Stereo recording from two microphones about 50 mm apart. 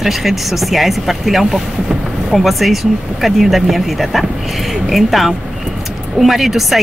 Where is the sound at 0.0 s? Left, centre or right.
Centre.